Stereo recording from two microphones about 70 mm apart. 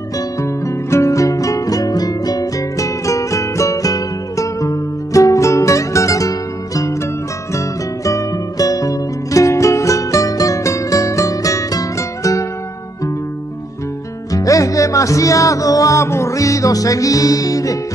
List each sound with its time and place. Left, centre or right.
0.4 s music: left
14.3 s music: left